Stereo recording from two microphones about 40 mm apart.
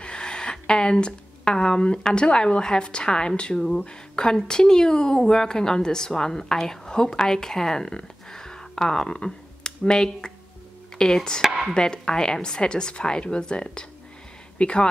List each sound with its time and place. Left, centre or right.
0.0 s speech: left
3.5 s speech: centre
3.8 s a woman's voice: left
11.4 s chopping: centre
11.7 s a woman's voice: centre